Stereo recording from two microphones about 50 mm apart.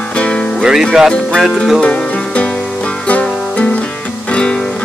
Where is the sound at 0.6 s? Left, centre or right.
Centre.